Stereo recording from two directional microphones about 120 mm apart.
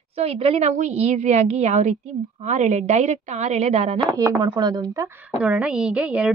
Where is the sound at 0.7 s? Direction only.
70° right (ahead or behind).